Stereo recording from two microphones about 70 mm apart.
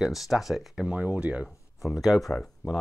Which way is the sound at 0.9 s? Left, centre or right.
Centre.